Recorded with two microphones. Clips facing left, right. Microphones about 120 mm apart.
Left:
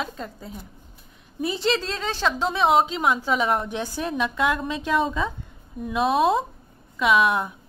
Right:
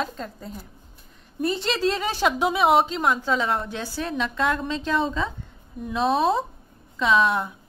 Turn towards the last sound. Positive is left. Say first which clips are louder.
# left 1 dB
turn(degrees=5)  # may be behind; listen again after turning